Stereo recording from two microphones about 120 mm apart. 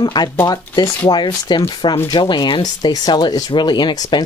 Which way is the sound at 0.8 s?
20° left (ahead or behind).